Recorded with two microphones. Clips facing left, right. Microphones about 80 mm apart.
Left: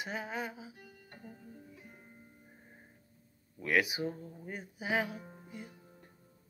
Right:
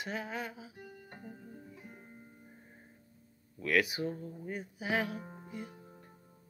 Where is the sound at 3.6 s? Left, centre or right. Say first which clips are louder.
Even; centre.